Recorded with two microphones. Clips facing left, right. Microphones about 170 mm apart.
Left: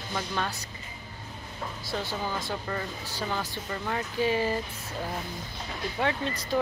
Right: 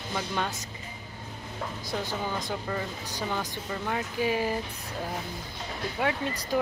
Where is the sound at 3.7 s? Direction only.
5° right (ahead or behind).